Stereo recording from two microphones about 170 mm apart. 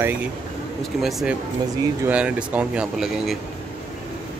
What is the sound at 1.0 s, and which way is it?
Speech, centre (ahead or behind).